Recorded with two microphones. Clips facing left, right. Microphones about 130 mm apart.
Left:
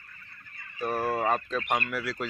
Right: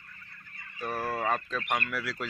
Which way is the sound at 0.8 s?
10° left (ahead or behind).